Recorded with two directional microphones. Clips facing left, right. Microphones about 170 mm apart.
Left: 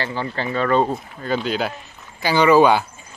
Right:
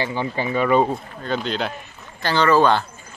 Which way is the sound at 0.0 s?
15° right (ahead or behind).